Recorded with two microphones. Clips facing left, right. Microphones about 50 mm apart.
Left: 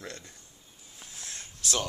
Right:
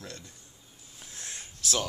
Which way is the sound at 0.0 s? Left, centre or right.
Left.